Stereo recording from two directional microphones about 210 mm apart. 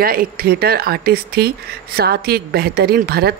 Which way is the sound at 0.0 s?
45° right (ahead or behind).